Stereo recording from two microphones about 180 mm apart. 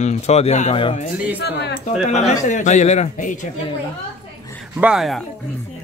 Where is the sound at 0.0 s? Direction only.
35° left (ahead or behind).